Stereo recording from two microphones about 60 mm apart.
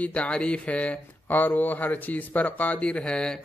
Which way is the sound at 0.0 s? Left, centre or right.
Left.